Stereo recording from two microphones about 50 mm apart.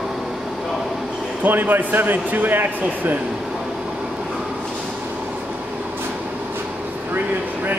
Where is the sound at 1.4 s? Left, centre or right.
Right.